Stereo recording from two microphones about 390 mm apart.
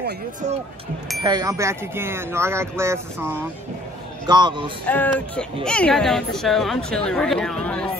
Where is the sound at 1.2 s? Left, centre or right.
Centre.